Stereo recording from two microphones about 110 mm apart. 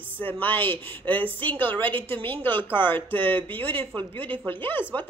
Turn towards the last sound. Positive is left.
turn(degrees=20)  # may be behind; listen again after turning